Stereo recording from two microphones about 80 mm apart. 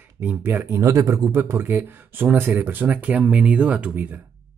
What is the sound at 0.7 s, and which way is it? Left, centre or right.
Speech, right.